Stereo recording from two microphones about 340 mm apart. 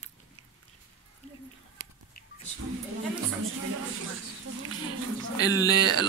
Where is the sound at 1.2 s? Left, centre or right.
Centre.